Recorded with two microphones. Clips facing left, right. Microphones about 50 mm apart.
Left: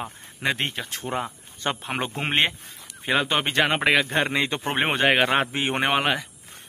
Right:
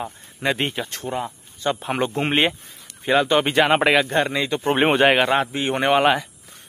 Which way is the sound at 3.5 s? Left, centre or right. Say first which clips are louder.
Right 4 dB; centre.